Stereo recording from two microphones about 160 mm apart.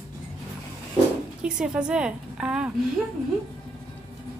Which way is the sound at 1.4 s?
5° right (ahead or behind).